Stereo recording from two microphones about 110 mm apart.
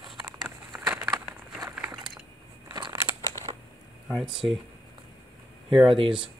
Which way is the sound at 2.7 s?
40° right (ahead or behind).